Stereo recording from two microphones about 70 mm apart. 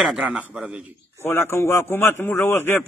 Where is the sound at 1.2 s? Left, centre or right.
Left.